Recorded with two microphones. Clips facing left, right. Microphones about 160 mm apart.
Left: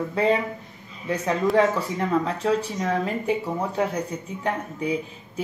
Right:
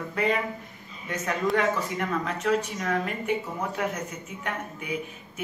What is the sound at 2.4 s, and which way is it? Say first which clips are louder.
Speech: left 3 dB; 30° left (ahead or behind).